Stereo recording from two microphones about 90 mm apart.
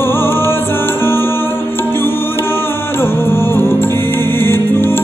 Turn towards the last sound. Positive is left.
turn(degrees=25)  # may be behind; listen again after turning